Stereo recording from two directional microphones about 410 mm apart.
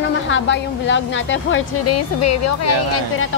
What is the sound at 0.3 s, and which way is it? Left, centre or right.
A woman's voice, left.